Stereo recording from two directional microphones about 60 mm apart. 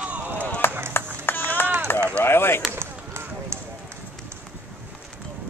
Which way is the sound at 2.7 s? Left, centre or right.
Right.